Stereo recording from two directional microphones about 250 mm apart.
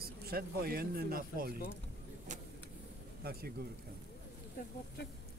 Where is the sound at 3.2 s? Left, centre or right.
Right.